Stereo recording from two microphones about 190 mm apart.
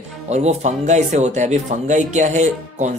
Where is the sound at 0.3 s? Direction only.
35° right (ahead or behind).